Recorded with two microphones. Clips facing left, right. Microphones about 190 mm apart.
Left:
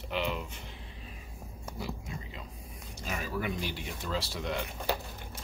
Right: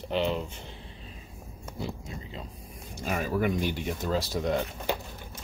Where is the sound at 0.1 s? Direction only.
30° right (ahead or behind).